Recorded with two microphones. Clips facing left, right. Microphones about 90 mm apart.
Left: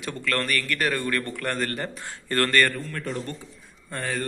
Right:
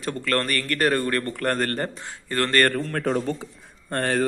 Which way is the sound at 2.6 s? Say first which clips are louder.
Right 6 dB; 70° right (ahead or behind).